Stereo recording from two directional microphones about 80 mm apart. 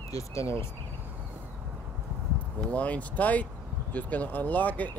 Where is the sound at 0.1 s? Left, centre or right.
Left.